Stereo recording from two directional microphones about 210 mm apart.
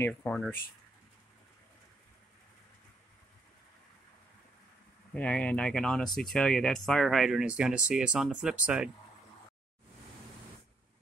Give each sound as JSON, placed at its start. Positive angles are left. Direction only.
{"t": 0.0, "sound": "speech", "side_deg": 5}
{"t": 5.1, "sound": "speech", "side_deg": 5}